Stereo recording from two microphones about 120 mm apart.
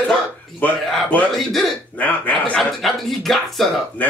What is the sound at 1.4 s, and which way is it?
Speech, centre (ahead or behind).